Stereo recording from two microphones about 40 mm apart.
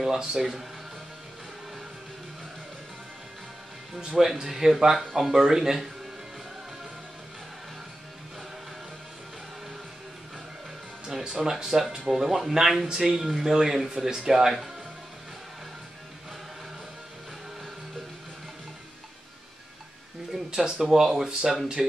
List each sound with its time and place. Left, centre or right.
0.0 s speech: centre
3.9 s speech: right
4.2 s speech: centre
11.2 s speech: centre
11.5 s speech: centre
20.3 s a sound: centre
20.8 s speech: centre